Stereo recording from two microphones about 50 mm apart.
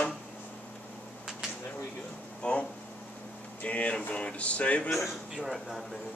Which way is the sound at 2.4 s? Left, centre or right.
Left.